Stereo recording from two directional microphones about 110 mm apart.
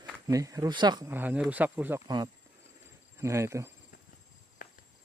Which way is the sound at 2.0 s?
40° right (ahead or behind).